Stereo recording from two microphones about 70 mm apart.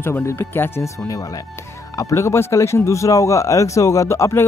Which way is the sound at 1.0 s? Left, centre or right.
Left.